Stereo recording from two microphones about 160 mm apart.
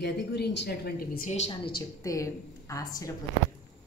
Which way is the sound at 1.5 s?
25° left (ahead or behind).